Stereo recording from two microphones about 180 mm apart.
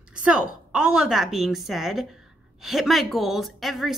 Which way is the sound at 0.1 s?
5° right (ahead or behind).